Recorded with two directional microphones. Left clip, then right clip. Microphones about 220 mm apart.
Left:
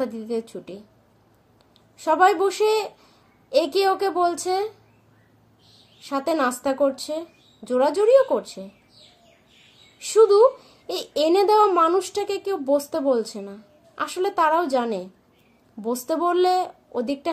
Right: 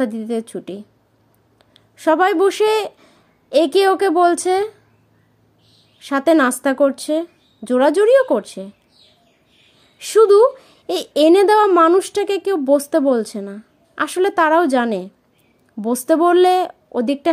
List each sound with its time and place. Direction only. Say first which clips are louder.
0.0 s a woman's voice: right 5 dB; 40° right (ahead or behind)
5.9 s a woman's voice: right 9 dB; 40° right (ahead or behind)
9.9 s a woman's voice: right 4 dB; 40° right (ahead or behind)